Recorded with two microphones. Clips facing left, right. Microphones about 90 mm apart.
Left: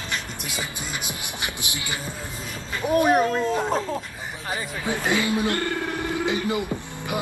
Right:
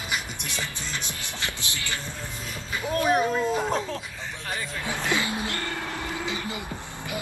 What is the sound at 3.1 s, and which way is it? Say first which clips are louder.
Speech: left 3 dB; centre (ahead or behind).